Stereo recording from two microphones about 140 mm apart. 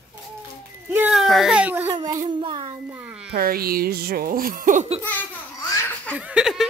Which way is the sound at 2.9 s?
15° right (ahead or behind).